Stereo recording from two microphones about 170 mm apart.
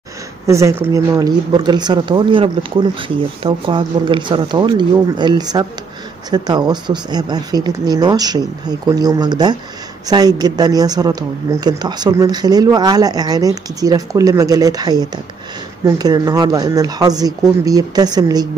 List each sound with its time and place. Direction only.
0.5 s speech: 15° right (ahead or behind)